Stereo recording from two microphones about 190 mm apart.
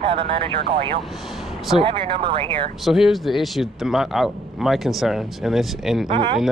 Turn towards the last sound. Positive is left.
turn(degrees=-25)  # may be behind; listen again after turning